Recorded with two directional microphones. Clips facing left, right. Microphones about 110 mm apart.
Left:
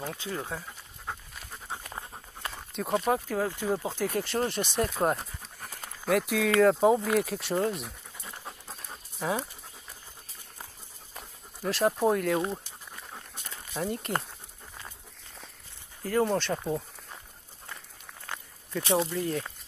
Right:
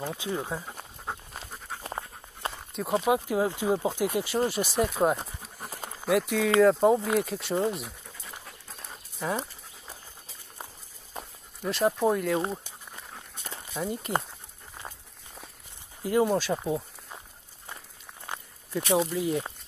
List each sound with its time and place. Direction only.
0.0 s speech: 15° right (ahead or behind)
1.8 s dog: 30° right (ahead or behind)
2.7 s speech: centre (ahead or behind)
3.3 s speech: 15° right (ahead or behind)
5.2 s pant: 30° right (ahead or behind)
6.0 s speech: centre (ahead or behind)
9.2 s speech: centre (ahead or behind)
11.6 s speech: centre (ahead or behind)
13.7 s speech: centre (ahead or behind)
16.0 s speech: 10° right (ahead or behind)
18.2 s a sound: 20° right (ahead or behind)
19.1 s speech: 10° right (ahead or behind)